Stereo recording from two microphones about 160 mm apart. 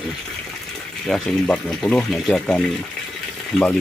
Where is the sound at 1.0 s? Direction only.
5° left (ahead or behind).